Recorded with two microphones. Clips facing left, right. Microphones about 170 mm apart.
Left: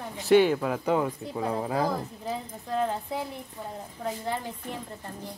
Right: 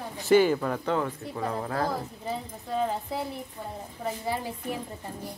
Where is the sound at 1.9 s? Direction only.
Centre (ahead or behind).